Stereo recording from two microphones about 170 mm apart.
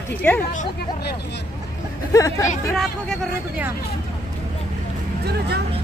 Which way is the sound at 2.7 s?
Centre (ahead or behind).